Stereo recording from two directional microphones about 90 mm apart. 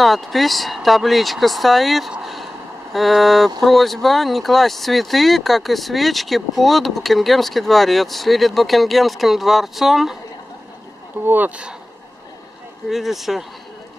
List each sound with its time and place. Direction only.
0.0 s speech: centre (ahead or behind)
11.2 s speech: 20° right (ahead or behind)
12.9 s speech: centre (ahead or behind)